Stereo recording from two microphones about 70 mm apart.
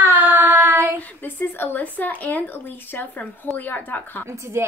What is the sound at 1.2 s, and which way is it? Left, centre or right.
Speech, left.